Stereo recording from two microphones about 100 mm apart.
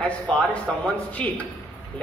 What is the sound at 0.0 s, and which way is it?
Speech, 10° left (ahead or behind).